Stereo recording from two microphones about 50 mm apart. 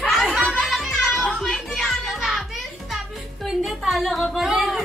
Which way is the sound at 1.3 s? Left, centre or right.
Centre.